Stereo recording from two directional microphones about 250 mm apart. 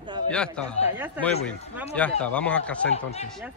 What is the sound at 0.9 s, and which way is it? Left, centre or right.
Speech, centre.